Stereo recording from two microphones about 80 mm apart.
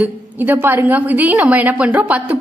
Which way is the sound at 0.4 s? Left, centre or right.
Right.